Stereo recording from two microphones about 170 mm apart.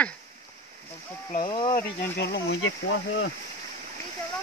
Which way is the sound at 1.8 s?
70° left (ahead or behind).